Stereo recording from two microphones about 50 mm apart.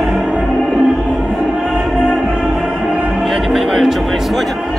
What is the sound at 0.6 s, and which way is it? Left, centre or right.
Music, centre.